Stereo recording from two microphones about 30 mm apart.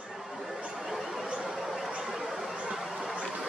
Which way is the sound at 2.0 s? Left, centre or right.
Centre.